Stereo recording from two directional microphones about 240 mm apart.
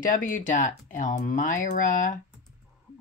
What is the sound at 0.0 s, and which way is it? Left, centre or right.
Speech, left.